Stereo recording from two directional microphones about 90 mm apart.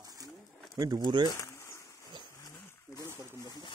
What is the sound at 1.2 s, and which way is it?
Speech, 40° left (ahead or behind).